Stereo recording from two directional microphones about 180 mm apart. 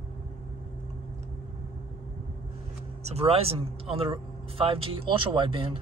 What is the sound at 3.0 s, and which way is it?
Speech, 35° right (ahead or behind).